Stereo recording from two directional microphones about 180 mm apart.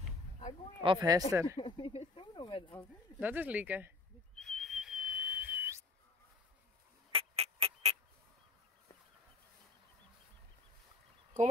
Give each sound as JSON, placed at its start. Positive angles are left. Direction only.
{"t": 0.8, "sound": "speech", "side_deg": -20}
{"t": 1.6, "sound": "speech", "side_deg": 30}
{"t": 3.2, "sound": "speech", "side_deg": -10}
{"t": 4.4, "sound": "whistle", "side_deg": 0}
{"t": 7.1, "sound": "music", "side_deg": -35}